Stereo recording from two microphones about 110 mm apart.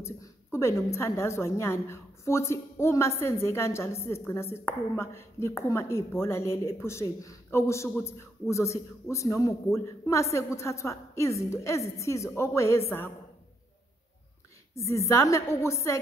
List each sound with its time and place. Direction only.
0.0 s a woman's voice: 25° left (ahead or behind)
14.7 s a woman's voice: 25° left (ahead or behind)